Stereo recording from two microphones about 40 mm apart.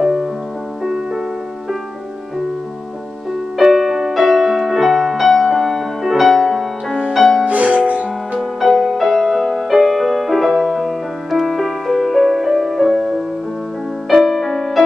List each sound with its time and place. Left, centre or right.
0.0 s music: centre
3.5 s music: centre
7.4 s music: right
8.4 s music: centre